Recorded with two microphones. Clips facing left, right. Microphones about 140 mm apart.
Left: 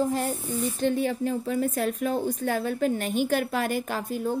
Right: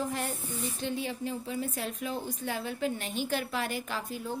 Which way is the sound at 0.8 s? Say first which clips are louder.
Left 9 dB; 55° left (ahead or behind).